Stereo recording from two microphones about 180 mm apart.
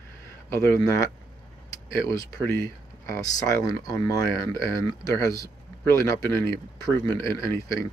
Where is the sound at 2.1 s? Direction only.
15° left (ahead or behind).